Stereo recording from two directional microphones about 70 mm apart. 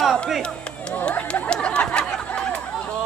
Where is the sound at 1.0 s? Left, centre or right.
Centre.